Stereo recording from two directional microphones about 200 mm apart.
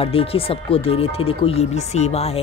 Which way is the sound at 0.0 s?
30° left (ahead or behind).